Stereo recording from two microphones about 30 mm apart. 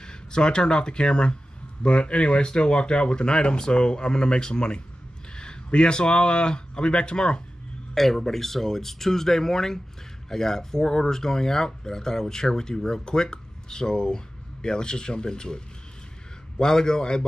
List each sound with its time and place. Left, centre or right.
0.0 s speech: left
7.9 s speech: centre; by 17.2 s left